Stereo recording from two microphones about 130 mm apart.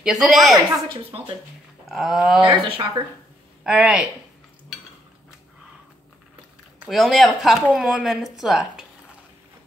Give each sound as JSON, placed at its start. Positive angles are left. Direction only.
{"t": 0.0, "sound": "speech", "side_deg": -5}
{"t": 0.6, "sound": "speech", "side_deg": -25}
{"t": 1.9, "sound": "speech", "side_deg": 0}
{"t": 2.5, "sound": "speech", "side_deg": -35}
{"t": 3.6, "sound": "a woman's voice", "side_deg": -10}
{"t": 6.9, "sound": "speech", "side_deg": 0}